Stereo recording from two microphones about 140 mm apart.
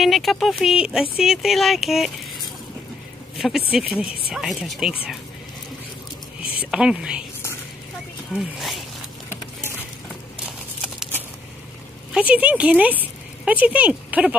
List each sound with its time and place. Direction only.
0.0 s speech: centre (ahead or behind)
3.3 s speech: centre (ahead or behind)
6.4 s a sound: 40° left (ahead or behind)
6.7 s speech: 5° right (ahead or behind)
8.3 s speech: 5° right (ahead or behind)
12.1 s speech: 10° right (ahead or behind)
13.0 s a sound: 10° right (ahead or behind)